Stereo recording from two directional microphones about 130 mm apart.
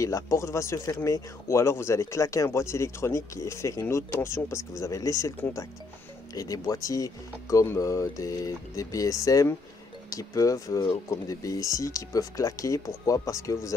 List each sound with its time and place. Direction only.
0.0 s speech: 25° left (ahead or behind)